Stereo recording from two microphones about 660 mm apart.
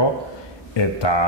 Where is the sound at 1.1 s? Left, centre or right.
Left.